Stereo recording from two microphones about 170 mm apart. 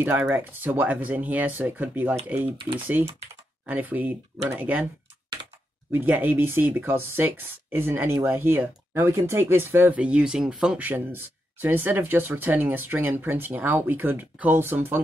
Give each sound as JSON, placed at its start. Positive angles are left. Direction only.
{"t": 0.0, "sound": "speech", "side_deg": -10}
{"t": 2.5, "sound": "speech", "side_deg": -30}
{"t": 3.6, "sound": "speech", "side_deg": -10}
{"t": 5.9, "sound": "speech", "side_deg": -10}